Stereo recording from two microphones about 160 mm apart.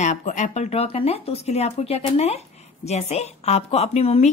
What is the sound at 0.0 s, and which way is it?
Speech, 50° left (ahead or behind).